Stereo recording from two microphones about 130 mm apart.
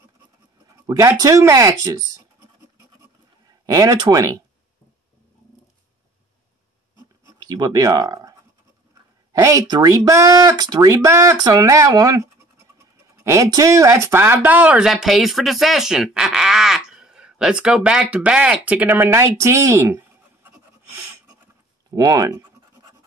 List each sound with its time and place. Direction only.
0.8 s speech: 25° right (ahead or behind)
3.4 s speech: 30° right (ahead or behind)
7.2 s speech: 30° right (ahead or behind)
21.9 s speech: 30° right (ahead or behind)